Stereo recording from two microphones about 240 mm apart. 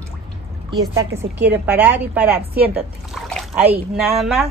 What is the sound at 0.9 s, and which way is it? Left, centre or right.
A woman's voice, centre.